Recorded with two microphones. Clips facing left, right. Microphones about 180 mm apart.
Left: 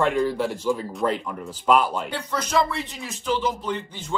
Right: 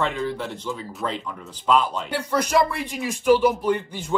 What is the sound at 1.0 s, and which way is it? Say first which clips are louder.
Speech: left 5 dB; 20° left (ahead or behind).